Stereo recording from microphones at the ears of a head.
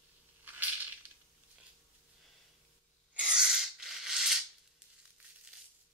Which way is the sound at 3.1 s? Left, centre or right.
Centre.